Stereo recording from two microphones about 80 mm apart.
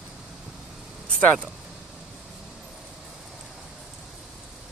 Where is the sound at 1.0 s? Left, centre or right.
Centre.